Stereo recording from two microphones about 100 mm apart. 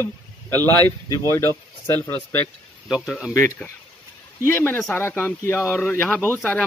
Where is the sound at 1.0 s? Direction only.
35° left (ahead or behind).